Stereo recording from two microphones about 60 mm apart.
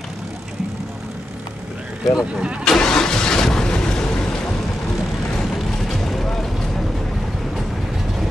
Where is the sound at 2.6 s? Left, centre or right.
Centre.